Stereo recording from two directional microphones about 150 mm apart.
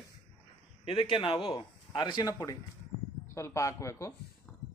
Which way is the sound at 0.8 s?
35° left (ahead or behind).